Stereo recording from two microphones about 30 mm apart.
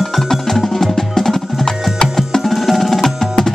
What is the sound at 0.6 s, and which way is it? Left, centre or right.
Music, centre.